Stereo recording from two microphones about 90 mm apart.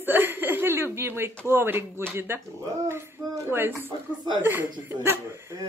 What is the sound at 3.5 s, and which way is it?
Speech, 25° right (ahead or behind).